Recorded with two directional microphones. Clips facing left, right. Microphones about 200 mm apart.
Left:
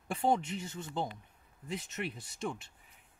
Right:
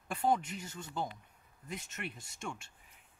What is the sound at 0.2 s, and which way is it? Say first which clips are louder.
Speech: left 1 dB; 25° left (ahead or behind).